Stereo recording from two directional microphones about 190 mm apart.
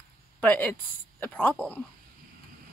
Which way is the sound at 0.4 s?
10° left (ahead or behind).